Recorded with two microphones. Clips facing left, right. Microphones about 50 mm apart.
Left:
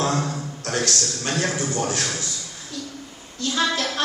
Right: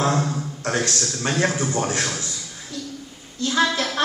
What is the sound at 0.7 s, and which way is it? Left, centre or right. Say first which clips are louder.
A man's voice: right 1 dB; right.